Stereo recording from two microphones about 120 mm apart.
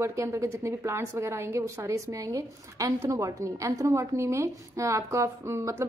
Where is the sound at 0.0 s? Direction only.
25° right (ahead or behind).